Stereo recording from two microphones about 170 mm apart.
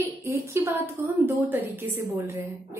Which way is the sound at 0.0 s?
15° right (ahead or behind).